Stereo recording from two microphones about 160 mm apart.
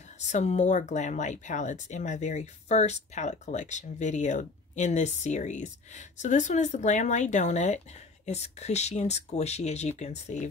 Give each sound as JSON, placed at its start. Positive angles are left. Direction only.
{"t": 0.3, "sound": "speech", "side_deg": 45}